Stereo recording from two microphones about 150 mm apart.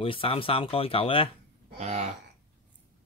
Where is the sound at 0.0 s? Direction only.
35° left (ahead or behind).